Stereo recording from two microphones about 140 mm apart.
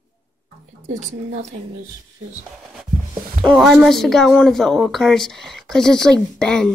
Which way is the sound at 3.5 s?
Centre (ahead or behind).